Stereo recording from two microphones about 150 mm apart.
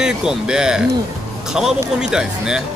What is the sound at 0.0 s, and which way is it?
A man's voice, 5° right (ahead or behind).